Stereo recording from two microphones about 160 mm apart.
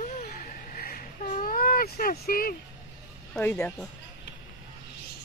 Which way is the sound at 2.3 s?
65° left (ahead or behind).